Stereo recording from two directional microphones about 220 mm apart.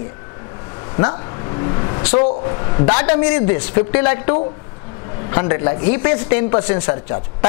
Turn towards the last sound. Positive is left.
turn(degrees=20)  # may be behind; listen again after turning